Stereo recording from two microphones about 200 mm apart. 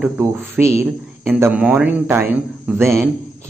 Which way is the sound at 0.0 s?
10° right (ahead or behind).